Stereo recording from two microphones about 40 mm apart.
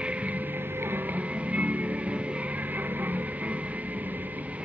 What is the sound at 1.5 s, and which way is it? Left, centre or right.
Music, right.